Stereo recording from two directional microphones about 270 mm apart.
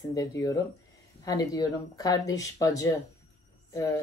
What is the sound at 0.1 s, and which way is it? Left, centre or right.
Speech, centre.